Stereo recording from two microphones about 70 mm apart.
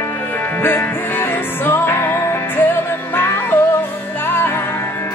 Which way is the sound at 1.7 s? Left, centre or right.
Left.